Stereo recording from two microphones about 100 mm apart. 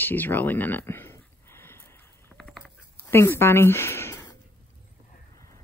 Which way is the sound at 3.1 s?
25° left (ahead or behind).